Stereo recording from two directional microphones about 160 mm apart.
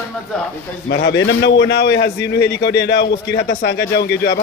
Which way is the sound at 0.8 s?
90° left.